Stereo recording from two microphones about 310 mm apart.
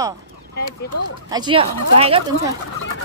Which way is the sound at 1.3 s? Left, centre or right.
Centre.